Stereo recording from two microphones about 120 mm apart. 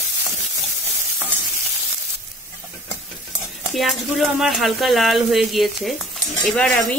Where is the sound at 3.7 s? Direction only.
Centre (ahead or behind).